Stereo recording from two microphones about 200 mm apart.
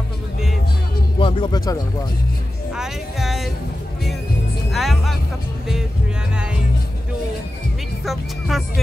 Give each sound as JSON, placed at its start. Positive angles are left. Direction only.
{"t": 1.2, "sound": "speech", "side_deg": 25}
{"t": 2.7, "sound": "speech", "side_deg": 0}
{"t": 4.7, "sound": "music", "side_deg": 0}
{"t": 8.0, "sound": "speech", "side_deg": 0}